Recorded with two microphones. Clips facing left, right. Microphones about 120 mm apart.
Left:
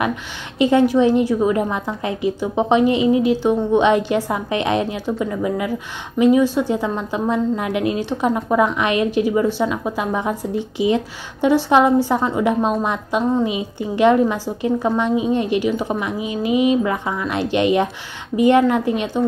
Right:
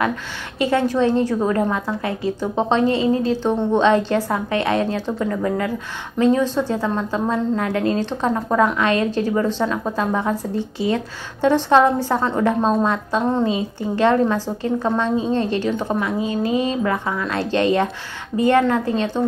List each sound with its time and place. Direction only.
0.0 s a woman's voice: 20° left (ahead or behind)